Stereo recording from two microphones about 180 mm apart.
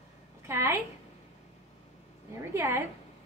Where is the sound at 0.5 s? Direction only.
15° right (ahead or behind).